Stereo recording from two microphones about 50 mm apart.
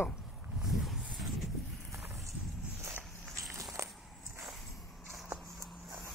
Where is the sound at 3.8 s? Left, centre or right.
Right.